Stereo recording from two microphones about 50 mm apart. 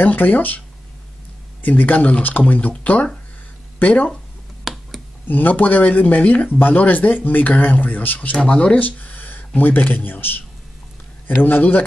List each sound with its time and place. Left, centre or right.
0.0 s speech: left
1.6 s speech: left
4.7 s a sound: centre
5.3 s speech: left
8.2 s speech: left
8.7 s a sound: left
9.6 s speech: left